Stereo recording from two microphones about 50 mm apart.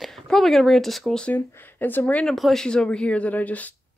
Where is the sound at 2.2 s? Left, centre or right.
Centre; by 3.7 s left.